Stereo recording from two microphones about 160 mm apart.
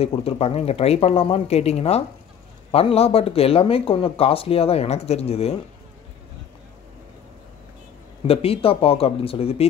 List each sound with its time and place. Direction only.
0.0 s speech: 35° left (ahead or behind)
8.3 s speech: 35° left (ahead or behind)